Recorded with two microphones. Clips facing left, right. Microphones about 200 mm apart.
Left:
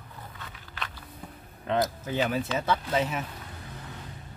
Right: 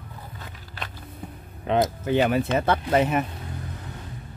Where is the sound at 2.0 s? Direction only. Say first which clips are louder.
Right 7 dB; 70° right (ahead or behind).